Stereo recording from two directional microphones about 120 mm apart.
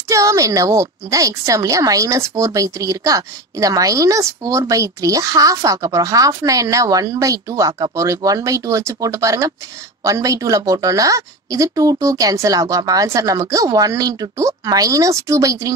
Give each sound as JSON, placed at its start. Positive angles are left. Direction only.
{"t": 0.1, "sound": "a woman's voice", "side_deg": -25}